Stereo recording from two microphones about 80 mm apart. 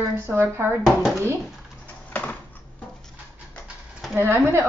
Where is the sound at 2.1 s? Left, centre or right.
Left.